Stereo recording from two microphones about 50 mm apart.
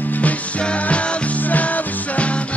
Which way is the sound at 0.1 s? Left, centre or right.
Left.